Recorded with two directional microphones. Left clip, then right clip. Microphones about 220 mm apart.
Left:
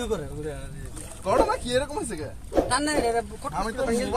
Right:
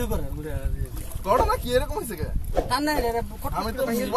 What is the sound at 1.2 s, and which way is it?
Speech, 20° right (ahead or behind).